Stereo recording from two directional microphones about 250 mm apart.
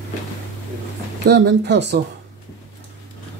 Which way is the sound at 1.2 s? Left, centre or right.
Right.